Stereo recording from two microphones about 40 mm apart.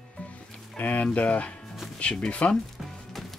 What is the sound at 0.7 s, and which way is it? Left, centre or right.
Speech, left.